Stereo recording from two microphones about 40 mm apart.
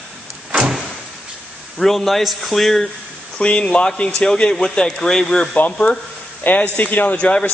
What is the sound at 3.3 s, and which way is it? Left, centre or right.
A man's voice, left.